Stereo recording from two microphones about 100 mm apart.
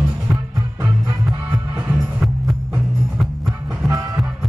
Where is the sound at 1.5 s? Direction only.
20° right (ahead or behind).